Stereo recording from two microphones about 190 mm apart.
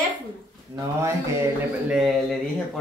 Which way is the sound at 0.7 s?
15° right (ahead or behind).